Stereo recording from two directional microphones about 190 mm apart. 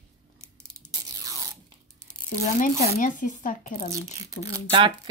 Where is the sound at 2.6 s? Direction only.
45° left (ahead or behind).